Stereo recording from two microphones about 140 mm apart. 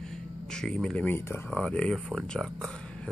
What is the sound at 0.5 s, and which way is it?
Speech, 5° left (ahead or behind).